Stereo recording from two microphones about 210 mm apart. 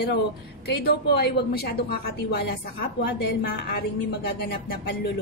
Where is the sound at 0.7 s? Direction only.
50° left (ahead or behind).